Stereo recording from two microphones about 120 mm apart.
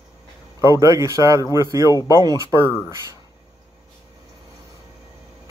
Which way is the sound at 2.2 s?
30° right (ahead or behind).